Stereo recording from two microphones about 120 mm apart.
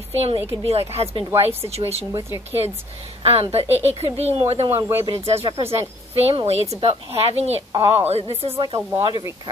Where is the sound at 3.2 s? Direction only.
60° right (ahead or behind).